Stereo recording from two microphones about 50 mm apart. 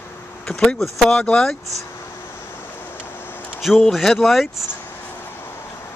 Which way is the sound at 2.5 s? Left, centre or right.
Left.